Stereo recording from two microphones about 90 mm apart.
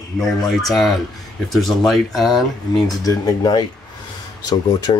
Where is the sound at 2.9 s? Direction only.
45° left (ahead or behind).